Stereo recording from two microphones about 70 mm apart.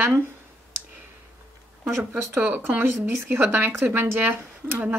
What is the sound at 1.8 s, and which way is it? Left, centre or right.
Speech, right.